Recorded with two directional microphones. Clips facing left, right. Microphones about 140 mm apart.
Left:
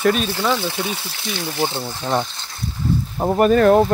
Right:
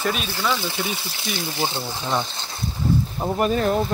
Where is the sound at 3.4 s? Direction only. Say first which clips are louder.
Left 8 dB; 55° left (ahead or behind).